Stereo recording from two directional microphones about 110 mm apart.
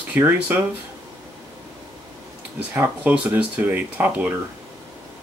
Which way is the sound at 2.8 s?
15° right (ahead or behind).